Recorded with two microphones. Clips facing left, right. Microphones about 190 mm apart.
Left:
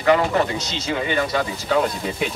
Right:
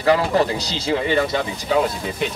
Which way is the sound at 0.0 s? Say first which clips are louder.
Right 1 dB; 35° right (ahead or behind).